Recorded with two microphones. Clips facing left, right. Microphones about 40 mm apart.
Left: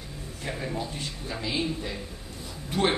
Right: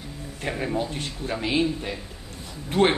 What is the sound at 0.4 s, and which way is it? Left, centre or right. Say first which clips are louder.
Speech: right 5 dB; right.